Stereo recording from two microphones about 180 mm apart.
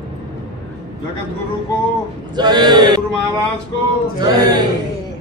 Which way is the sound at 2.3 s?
25° right (ahead or behind).